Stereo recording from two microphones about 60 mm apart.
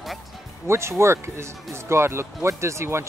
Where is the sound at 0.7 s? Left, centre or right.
Right.